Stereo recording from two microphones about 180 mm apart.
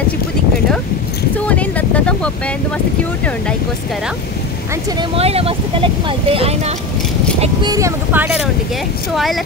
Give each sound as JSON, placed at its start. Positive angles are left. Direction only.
{"t": 1.5, "sound": "a sound", "side_deg": 10}
{"t": 5.1, "sound": "speech", "side_deg": -35}
{"t": 7.7, "sound": "speech", "side_deg": -15}